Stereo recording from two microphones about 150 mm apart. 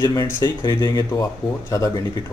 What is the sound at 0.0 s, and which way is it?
Speech, 25° left (ahead or behind).